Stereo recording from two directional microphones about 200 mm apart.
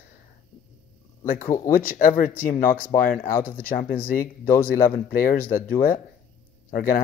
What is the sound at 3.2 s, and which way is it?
Speech, 15° left (ahead or behind).